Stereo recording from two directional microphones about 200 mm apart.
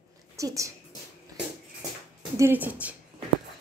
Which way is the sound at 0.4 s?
15° right (ahead or behind).